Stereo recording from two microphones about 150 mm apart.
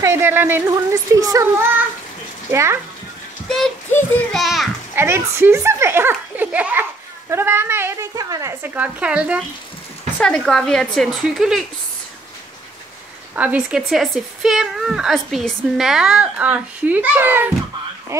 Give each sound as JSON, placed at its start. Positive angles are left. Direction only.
{"t": 0.0, "sound": "speech", "side_deg": -15}
{"t": 3.4, "sound": "a child's voice", "side_deg": 5}
{"t": 4.9, "sound": "a child's voice", "side_deg": -15}
{"t": 10.1, "sound": "speech", "side_deg": 5}
{"t": 13.3, "sound": "speech", "side_deg": -10}